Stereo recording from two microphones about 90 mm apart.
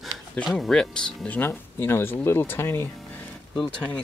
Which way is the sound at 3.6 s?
10° left (ahead or behind).